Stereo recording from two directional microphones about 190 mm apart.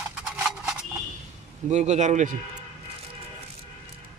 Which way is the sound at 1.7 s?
35° right (ahead or behind).